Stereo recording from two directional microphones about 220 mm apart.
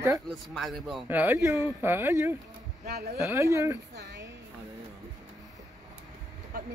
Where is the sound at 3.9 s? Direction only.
55° right (ahead or behind).